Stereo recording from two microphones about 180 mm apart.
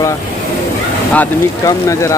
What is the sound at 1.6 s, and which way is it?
Speech, 20° left (ahead or behind).